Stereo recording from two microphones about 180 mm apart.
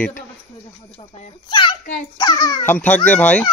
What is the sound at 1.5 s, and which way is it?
A child's voice, 25° left (ahead or behind).